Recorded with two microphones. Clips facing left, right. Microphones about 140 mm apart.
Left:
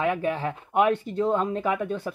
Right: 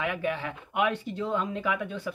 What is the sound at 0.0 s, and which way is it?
Speech, 35° left (ahead or behind).